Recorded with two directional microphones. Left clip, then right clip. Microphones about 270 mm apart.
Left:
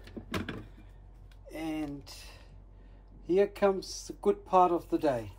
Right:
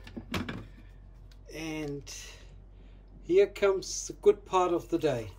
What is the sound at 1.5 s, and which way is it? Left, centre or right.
Speech, centre.